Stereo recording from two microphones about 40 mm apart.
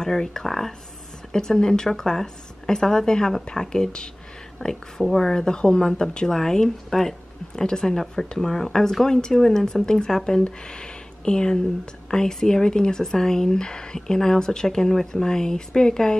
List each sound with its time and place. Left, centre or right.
0.0 s speech: centre
1.3 s speech: centre